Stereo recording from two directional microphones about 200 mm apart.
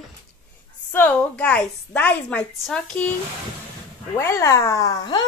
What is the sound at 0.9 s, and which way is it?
A woman's voice, 10° left (ahead or behind).